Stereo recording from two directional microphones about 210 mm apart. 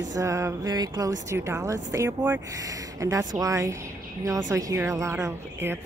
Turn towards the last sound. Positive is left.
turn(degrees=-10)  # may be behind; listen again after turning